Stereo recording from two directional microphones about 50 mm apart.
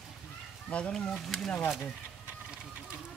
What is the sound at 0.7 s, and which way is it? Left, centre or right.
Speech, left.